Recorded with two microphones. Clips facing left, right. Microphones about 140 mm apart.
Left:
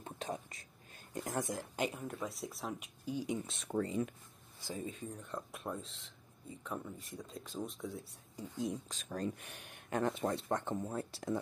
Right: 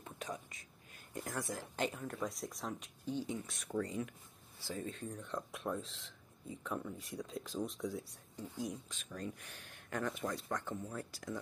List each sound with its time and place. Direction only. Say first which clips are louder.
0.0 s whispering: left 3 dB; 30° left (ahead or behind)
1.1 s speech: left 3 dB; 20° left (ahead or behind)
3.4 s speech: left 2 dB; 25° left (ahead or behind)
4.6 s speech: even; 15° left (ahead or behind)
8.4 s speech: left 3 dB; 20° left (ahead or behind)
8.8 s speech: left 5 dB; 35° left (ahead or behind)
9.4 s speech: left 2 dB; 20° left (ahead or behind)